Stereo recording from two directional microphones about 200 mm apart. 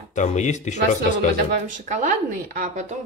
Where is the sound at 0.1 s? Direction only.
35° left (ahead or behind).